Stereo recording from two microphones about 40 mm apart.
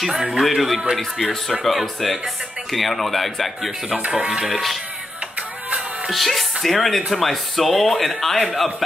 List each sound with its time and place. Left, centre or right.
0.3 s speech: centre
4.0 s speech: right
4.5 s speech: centre
6.0 s speech: centre